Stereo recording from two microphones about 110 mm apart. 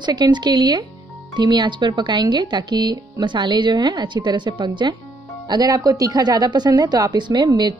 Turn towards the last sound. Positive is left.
turn(degrees=-40)  # may be behind; listen again after turning